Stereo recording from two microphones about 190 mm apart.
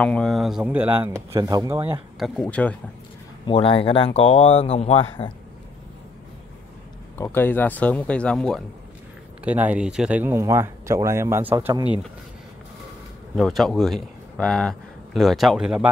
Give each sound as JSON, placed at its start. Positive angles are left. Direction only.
{"t": 0.0, "sound": "speech", "side_deg": 5}
{"t": 2.1, "sound": "speech", "side_deg": 0}
{"t": 3.4, "sound": "speech", "side_deg": 30}
{"t": 7.2, "sound": "speech", "side_deg": 10}
{"t": 9.4, "sound": "speech", "side_deg": -10}
{"t": 13.4, "sound": "a man's voice", "side_deg": 0}